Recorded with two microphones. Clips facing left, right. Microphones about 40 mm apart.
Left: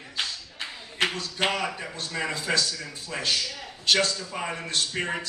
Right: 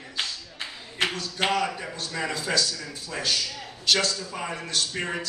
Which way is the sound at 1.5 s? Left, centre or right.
Centre.